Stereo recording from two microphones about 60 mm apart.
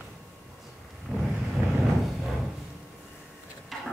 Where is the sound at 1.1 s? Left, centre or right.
Centre.